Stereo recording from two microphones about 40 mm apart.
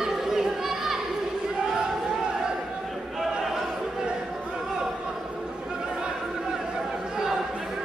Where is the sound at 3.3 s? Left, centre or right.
Centre.